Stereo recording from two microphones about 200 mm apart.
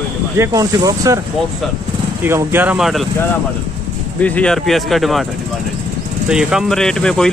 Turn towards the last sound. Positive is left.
turn(degrees=5)  # may be behind; listen again after turning